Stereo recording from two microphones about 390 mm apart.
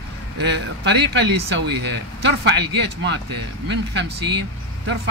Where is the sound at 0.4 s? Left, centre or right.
Right.